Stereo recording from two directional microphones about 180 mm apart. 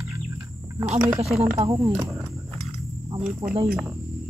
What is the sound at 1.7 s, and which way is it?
Speech, 15° right (ahead or behind).